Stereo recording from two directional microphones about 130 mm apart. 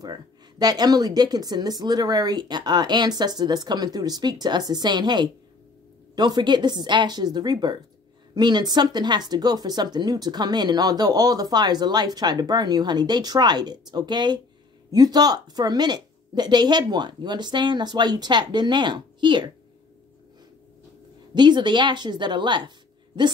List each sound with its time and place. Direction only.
0.0 s speech: 30° right (ahead or behind)
21.4 s speech: 35° right (ahead or behind)